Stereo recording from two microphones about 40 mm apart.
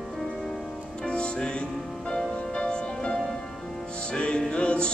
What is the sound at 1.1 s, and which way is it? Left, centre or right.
Music, left.